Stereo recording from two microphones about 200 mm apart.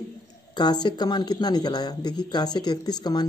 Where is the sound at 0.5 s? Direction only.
20° left (ahead or behind).